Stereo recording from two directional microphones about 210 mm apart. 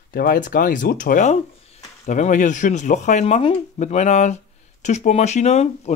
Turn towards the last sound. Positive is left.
turn(degrees=30)  # may be behind; listen again after turning